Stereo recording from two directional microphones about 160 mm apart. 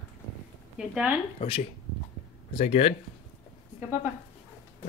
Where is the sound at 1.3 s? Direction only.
35° left (ahead or behind).